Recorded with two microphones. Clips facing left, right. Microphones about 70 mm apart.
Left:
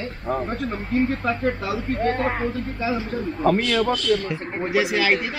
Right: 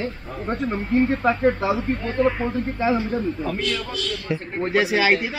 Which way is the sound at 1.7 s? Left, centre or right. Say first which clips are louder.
Right 3 dB; centre.